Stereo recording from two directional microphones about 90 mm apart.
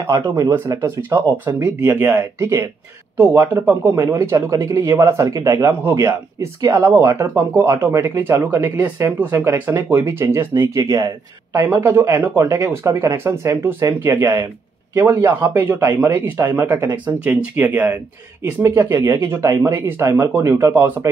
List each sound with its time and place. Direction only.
0.7 s speech: 25° right (ahead or behind)
6.8 s speech: 30° right (ahead or behind)
11.6 s speech: 25° right (ahead or behind)